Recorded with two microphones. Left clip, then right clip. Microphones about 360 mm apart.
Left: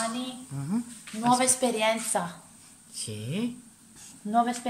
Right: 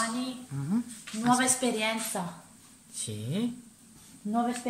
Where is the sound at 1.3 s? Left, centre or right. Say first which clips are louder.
Left 2 dB; centre.